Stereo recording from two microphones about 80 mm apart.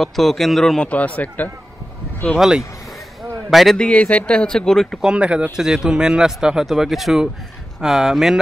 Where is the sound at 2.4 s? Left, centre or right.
Centre.